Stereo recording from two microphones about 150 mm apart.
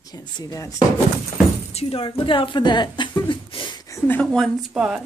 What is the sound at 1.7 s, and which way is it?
A woman's voice, 40° left (ahead or behind).